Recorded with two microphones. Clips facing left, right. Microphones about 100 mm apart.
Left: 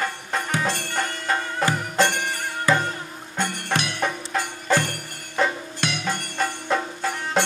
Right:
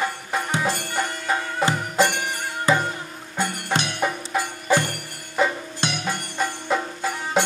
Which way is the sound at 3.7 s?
25° right (ahead or behind).